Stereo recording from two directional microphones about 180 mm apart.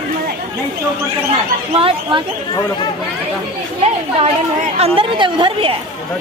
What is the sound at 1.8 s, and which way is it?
Speech, 30° right (ahead or behind).